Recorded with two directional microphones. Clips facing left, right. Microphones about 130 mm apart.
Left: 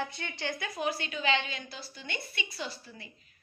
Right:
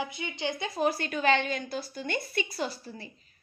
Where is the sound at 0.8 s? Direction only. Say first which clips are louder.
Right 6 dB; 45° right (ahead or behind).